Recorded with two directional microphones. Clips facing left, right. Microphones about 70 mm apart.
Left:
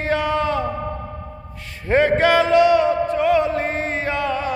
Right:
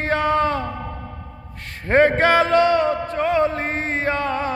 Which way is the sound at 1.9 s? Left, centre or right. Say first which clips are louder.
Even; right.